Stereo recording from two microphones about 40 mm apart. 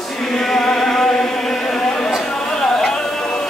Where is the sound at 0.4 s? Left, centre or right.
Centre.